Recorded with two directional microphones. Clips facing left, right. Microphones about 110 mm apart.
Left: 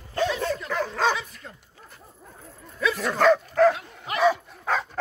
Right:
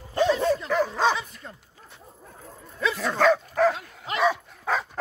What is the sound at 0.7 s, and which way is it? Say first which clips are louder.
Dog: right 2 dB; 15° right (ahead or behind).